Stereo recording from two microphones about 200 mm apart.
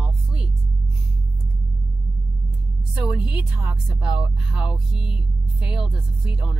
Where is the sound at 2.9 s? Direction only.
5° right (ahead or behind).